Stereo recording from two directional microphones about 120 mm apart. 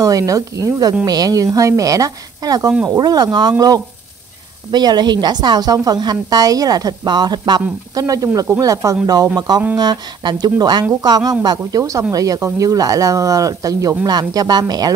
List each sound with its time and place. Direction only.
0.0 s a woman's voice: 30° right (ahead or behind)